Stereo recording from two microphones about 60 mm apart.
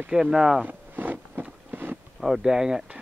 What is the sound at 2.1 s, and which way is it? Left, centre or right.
Speech, centre.